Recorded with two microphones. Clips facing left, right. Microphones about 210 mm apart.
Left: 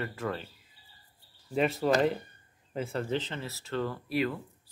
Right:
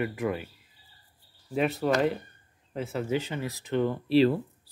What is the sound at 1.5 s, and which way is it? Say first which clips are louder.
Speech: right 1 dB; centre (ahead or behind).